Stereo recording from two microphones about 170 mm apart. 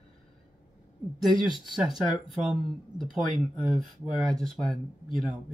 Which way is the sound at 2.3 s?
Centre (ahead or behind).